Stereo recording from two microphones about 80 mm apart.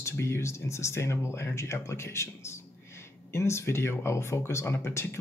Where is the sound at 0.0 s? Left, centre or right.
Left.